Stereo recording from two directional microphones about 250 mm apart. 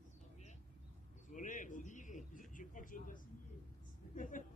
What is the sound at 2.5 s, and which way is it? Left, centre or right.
Speech, left.